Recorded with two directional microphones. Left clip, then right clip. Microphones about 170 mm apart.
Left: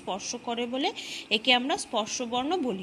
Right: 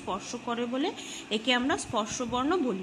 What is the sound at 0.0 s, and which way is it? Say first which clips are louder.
A woman's voice: left 1 dB; 15° left (ahead or behind).